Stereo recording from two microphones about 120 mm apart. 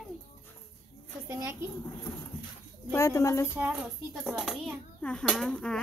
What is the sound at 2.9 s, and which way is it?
Speech, 25° left (ahead or behind).